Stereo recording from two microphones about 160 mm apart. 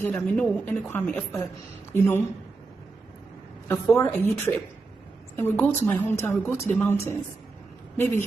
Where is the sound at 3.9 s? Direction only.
15° left (ahead or behind).